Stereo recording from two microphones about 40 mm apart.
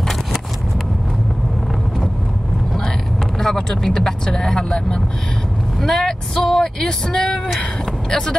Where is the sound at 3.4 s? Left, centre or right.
Centre.